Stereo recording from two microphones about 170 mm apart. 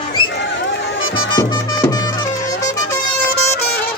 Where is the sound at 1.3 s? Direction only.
20° left (ahead or behind).